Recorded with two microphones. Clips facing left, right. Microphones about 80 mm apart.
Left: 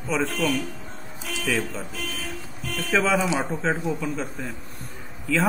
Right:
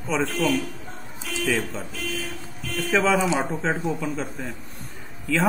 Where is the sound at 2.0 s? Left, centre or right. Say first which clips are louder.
Right 2 dB; left.